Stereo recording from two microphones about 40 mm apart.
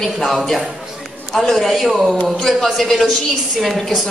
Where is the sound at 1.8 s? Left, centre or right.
Centre.